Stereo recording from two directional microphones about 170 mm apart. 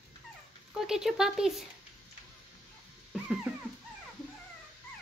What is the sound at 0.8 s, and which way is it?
Speech, 5° right (ahead or behind).